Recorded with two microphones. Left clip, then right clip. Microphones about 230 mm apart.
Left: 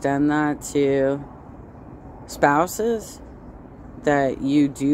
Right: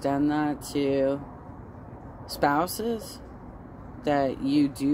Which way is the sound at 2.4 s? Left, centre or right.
Centre.